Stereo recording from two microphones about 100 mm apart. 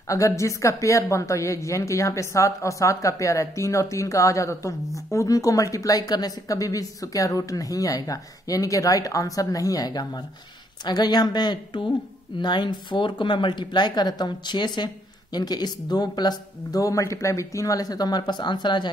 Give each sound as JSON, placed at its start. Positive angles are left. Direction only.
{"t": 0.1, "sound": "a woman's voice", "side_deg": 30}